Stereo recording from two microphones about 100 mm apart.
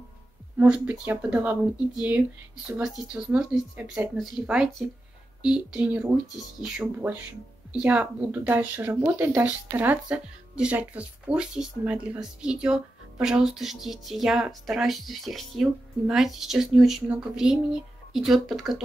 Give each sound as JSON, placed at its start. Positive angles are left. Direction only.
{"t": 0.6, "sound": "speech", "side_deg": -15}